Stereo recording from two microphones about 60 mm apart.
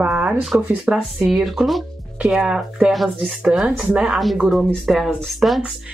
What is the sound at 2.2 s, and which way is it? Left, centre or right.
Speech, centre.